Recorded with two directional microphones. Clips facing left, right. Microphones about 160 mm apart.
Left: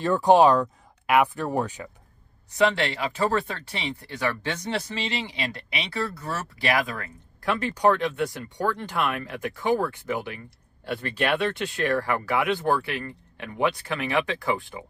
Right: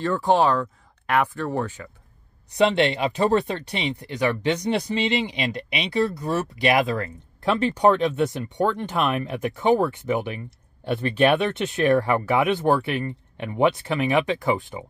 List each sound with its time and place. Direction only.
0.0 s speech: 15° left (ahead or behind)
2.5 s speech: 20° right (ahead or behind)